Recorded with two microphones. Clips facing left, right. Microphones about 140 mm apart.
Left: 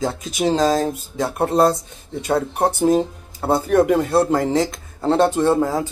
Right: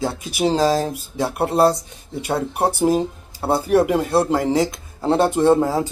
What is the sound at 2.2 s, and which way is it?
Speech, 10° right (ahead or behind).